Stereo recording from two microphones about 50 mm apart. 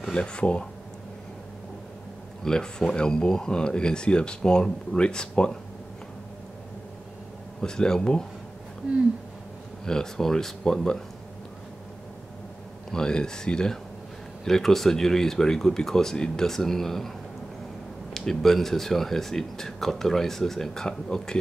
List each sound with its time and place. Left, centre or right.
0.1 s speech: centre
2.4 s speech: centre
7.6 s speech: centre
9.8 s speech: centre
12.9 s speech: centre
18.1 s speech: centre